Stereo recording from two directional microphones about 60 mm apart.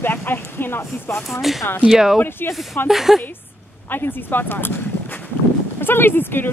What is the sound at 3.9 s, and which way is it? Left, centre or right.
Speech, left.